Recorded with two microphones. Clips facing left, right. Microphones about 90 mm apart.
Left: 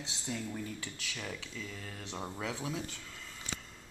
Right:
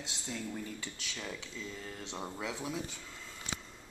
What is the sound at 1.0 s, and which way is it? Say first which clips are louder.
Speech: even; 20° right (ahead or behind).